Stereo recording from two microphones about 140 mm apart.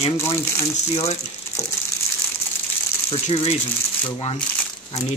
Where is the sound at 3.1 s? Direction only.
45° left (ahead or behind).